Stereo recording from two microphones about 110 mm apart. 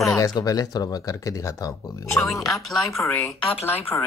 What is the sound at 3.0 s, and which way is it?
Speech, 20° left (ahead or behind).